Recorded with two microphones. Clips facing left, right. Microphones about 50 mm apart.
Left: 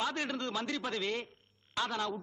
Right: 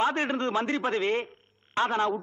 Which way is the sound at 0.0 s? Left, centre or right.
Right.